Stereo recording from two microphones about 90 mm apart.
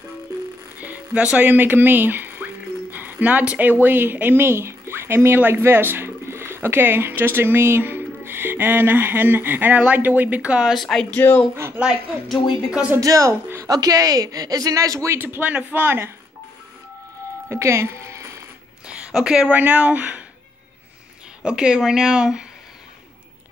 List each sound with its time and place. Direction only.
0.7 s speech: 20° right (ahead or behind)
10.7 s speech: 5° left (ahead or behind)
11.1 s speech: 20° left (ahead or behind)
11.5 s a sound: 30° right (ahead or behind)
13.0 s a woman's voice: 35° right (ahead or behind)
13.7 s speech: 45° right (ahead or behind)
15.1 s speech: 20° right (ahead or behind)
17.5 s speech: 30° right (ahead or behind)
18.9 s speech: 10° right (ahead or behind)
21.4 s speech: 10° right (ahead or behind)